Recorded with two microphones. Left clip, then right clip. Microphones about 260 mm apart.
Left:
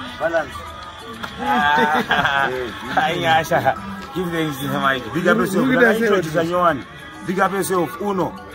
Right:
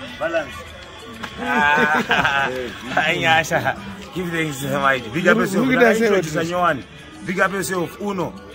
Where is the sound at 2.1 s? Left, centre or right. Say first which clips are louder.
Even; centre.